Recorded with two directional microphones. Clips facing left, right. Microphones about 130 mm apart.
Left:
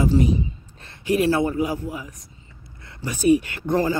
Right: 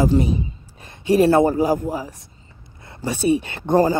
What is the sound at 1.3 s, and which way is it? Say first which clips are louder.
Speech: right 6 dB; 40° right (ahead or behind).